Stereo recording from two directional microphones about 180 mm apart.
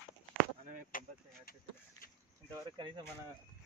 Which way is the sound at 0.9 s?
50° left (ahead or behind).